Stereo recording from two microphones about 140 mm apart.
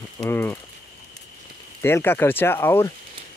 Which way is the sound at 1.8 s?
15° left (ahead or behind).